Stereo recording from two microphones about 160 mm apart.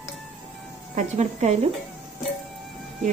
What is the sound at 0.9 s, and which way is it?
Speech, 45° right (ahead or behind).